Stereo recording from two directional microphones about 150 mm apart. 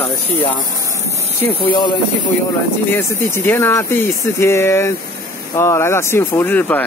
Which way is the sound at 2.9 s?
15° left (ahead or behind).